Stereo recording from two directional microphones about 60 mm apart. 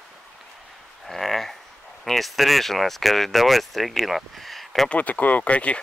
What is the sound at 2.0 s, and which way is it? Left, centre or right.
Speech, centre.